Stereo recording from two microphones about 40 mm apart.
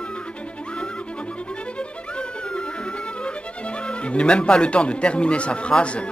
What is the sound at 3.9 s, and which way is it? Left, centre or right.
Speech, left.